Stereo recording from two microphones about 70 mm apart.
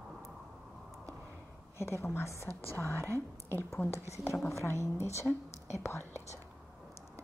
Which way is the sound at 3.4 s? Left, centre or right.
Left.